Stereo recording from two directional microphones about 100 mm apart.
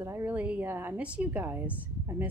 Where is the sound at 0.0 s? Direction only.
25° right (ahead or behind).